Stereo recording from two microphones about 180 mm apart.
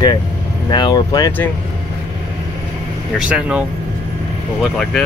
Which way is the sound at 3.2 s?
5° right (ahead or behind).